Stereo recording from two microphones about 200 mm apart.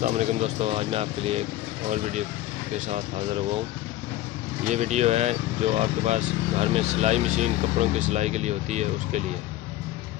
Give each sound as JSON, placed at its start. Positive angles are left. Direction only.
{"t": 0.0, "sound": "speech", "side_deg": -30}
{"t": 4.6, "sound": "speech", "side_deg": -35}